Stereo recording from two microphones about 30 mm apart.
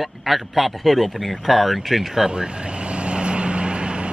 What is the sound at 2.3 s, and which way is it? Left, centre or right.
Vehicle, right.